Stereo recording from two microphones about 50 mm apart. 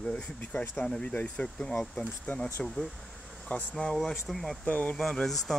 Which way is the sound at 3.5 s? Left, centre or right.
Left.